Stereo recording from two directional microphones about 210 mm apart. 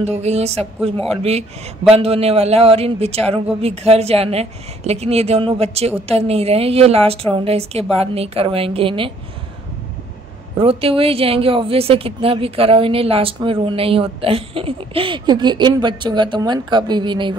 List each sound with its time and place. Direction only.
0.0 s speech: 30° right (ahead or behind)
10.6 s speech: 25° right (ahead or behind)